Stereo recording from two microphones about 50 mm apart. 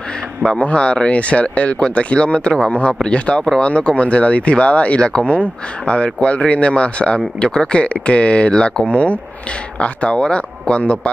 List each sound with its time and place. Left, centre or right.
0.6 s speech: left